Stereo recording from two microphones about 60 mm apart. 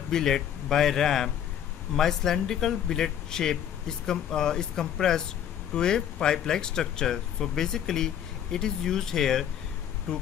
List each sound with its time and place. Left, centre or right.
0.1 s speech: centre